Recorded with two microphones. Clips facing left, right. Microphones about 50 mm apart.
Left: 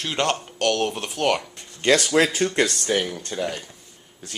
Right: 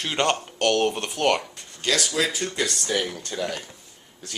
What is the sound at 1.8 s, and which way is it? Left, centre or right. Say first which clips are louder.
Speech: left 6 dB; left.